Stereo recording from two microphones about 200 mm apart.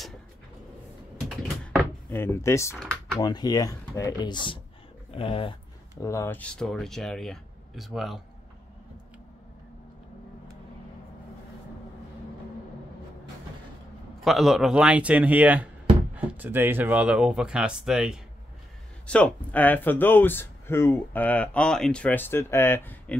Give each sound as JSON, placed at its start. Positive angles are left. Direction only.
{"t": 2.0, "sound": "speech", "side_deg": 15}
{"t": 5.1, "sound": "a sound", "side_deg": 30}
{"t": 6.0, "sound": "speech", "side_deg": 15}
{"t": 14.2, "sound": "speech", "side_deg": 0}